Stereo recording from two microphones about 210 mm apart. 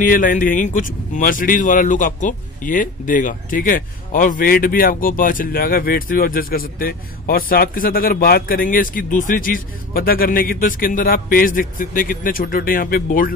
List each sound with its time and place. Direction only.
0.0 s speech: 40° left (ahead or behind)